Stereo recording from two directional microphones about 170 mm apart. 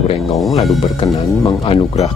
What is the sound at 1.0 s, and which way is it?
Speech, 30° left (ahead or behind).